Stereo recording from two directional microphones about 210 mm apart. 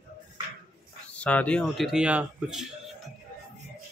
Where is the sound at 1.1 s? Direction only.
5° left (ahead or behind).